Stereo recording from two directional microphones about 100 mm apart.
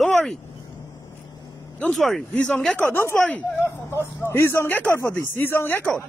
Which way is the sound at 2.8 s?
20° left (ahead or behind).